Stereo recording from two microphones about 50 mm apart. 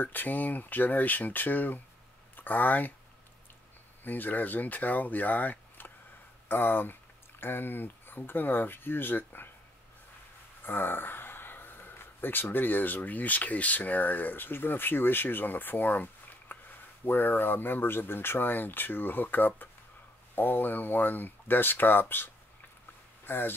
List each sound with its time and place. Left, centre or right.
0.0 s speech: left
4.0 s speech: left
6.5 s speech: left
10.6 s speech: left